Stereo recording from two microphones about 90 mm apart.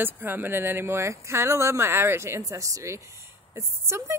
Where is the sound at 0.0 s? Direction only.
20° right (ahead or behind).